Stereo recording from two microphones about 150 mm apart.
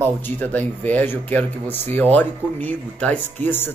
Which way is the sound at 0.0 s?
10° left (ahead or behind).